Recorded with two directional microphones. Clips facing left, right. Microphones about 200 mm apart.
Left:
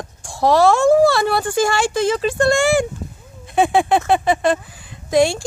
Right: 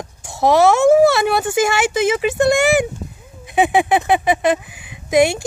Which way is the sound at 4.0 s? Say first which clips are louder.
Even; 15° right (ahead or behind).